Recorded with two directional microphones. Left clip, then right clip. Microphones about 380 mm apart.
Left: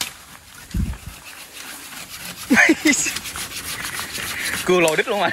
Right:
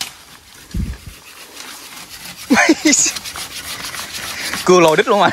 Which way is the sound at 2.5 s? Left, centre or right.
Centre.